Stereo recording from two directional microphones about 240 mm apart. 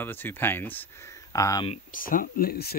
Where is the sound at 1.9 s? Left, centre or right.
Left.